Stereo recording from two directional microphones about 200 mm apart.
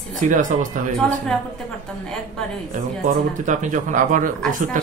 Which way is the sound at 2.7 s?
40° right (ahead or behind).